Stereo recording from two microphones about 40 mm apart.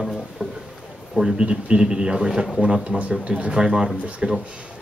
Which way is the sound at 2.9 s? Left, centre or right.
Right.